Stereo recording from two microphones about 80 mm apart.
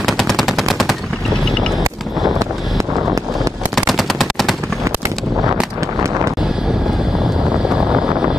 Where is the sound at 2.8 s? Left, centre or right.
Right.